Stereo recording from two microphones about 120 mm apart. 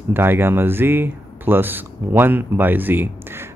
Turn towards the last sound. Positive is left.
turn(degrees=-20)  # may be behind; listen again after turning